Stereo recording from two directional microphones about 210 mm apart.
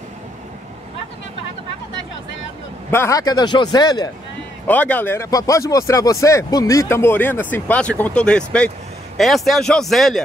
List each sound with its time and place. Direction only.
2.9 s speech: 15° left (ahead or behind)
4.6 s speech: 5° left (ahead or behind)